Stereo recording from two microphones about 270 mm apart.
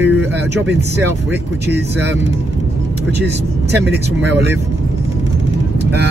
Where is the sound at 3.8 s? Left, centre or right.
Right.